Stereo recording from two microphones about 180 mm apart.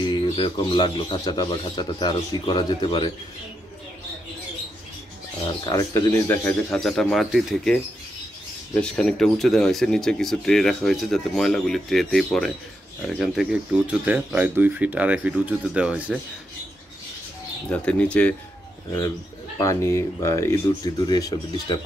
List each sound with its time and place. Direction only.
0.0 s speech: 25° left (ahead or behind)
5.7 s speech: 20° left (ahead or behind); by 16.2 s 5° right (ahead or behind)
17.6 s speech: 5° left (ahead or behind)
18.9 s speech: 15° left (ahead or behind)